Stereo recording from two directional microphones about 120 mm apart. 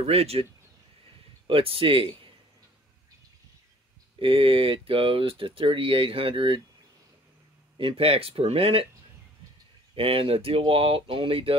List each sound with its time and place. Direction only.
0.0 s speech: 55° right (ahead or behind)
1.5 s speech: 50° right (ahead or behind)
4.2 s speech: 50° right (ahead or behind)
7.7 s speech: 50° right (ahead or behind)
9.9 s speech: 50° right (ahead or behind)